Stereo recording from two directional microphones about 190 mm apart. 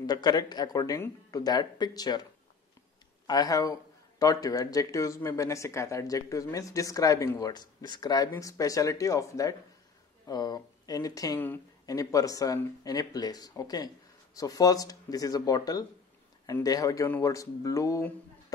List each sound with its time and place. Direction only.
0.0 s speech: 20° left (ahead or behind)
3.3 s speech: 20° left (ahead or behind)